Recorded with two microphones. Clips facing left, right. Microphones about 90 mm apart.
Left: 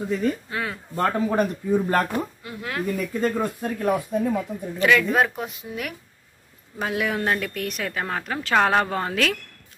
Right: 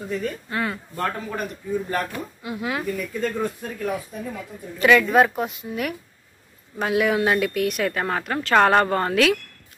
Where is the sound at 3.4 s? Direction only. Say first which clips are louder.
Left 1 dB; 40° left (ahead or behind).